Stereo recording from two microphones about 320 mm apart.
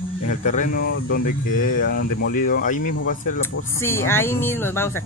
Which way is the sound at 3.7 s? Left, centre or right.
Centre.